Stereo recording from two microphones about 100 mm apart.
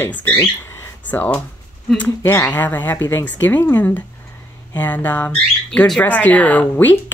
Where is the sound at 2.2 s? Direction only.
25° left (ahead or behind).